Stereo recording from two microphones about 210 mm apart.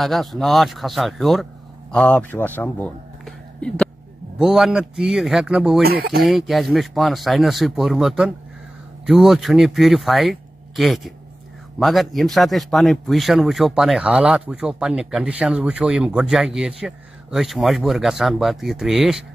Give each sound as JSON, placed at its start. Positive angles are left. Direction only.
{"t": 0.0, "sound": "speech", "side_deg": 0}
{"t": 5.8, "sound": "speech", "side_deg": -50}
{"t": 6.2, "sound": "speech", "side_deg": 0}